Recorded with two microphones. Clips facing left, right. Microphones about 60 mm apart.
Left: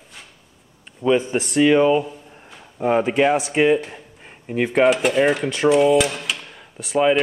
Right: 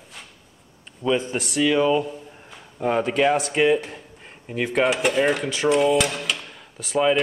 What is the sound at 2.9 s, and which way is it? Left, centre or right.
Speech, centre.